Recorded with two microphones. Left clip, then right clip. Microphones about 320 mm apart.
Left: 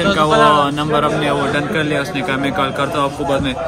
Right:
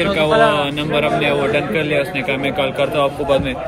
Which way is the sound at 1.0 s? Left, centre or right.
Left.